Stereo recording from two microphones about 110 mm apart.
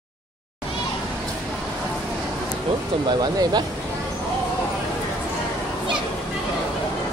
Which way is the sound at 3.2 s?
35° right (ahead or behind).